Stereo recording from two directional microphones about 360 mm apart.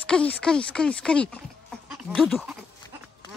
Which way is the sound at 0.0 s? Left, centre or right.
Centre.